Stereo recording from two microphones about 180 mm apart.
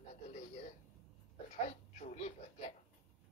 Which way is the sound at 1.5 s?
40° left (ahead or behind).